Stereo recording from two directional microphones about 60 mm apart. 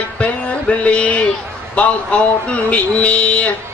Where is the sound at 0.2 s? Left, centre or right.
Left.